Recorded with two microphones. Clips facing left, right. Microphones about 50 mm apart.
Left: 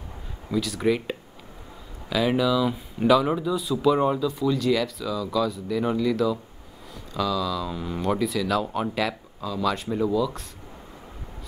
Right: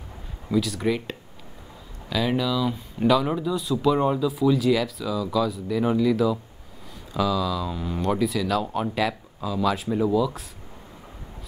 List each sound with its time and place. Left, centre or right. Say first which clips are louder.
0.5 s speech: even; centre